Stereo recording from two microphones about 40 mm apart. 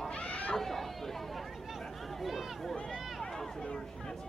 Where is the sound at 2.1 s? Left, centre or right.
Centre.